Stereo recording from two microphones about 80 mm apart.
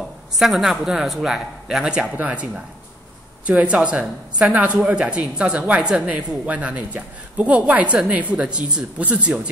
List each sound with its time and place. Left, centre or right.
0.4 s speech: centre